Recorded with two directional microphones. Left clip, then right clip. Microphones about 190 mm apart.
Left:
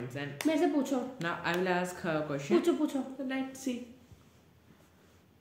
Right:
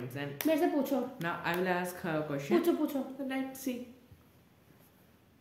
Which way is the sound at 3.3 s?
15° left (ahead or behind).